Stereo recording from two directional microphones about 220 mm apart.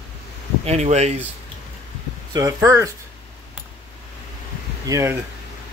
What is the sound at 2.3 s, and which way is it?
Speech, 15° right (ahead or behind).